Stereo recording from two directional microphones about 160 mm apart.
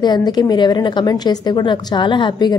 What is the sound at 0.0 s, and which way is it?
Speech, 25° left (ahead or behind).